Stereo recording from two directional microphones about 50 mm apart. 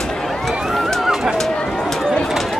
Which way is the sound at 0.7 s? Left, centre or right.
Centre.